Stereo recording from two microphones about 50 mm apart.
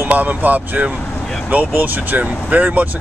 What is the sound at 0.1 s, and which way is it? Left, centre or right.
Speech, right.